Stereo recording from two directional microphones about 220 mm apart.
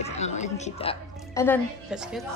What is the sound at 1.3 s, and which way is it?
Speech, 10° left (ahead or behind).